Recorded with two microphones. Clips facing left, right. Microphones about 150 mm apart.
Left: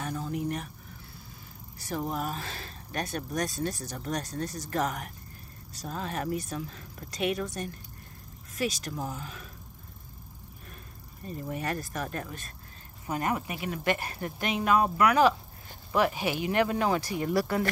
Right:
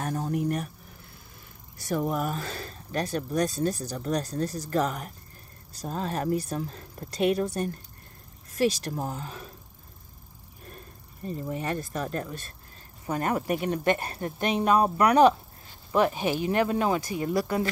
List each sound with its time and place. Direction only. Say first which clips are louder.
0.0 s a sound: right 4 dB; 50° right (ahead or behind)
1.9 s speech: right 4 dB; 55° right (ahead or behind); by 9.5 s 35° right (ahead or behind)
11.2 s speech: right 3 dB; 25° right (ahead or behind)
13.8 s speech: even; 25° right (ahead or behind)
15.9 s speech: right 3 dB; 25° right (ahead or behind)